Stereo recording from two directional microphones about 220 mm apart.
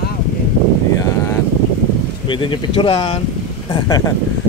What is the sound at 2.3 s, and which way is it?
Speech, 20° left (ahead or behind).